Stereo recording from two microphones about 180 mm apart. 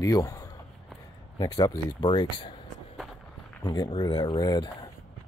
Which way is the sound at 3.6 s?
20° left (ahead or behind).